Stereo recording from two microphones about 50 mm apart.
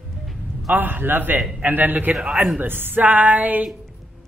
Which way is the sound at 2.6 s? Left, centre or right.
Right.